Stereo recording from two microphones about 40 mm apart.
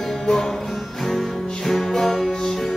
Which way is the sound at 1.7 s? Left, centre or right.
Centre.